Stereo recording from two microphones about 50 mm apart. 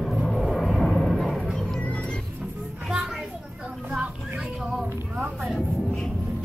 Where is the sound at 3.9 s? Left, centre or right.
Centre.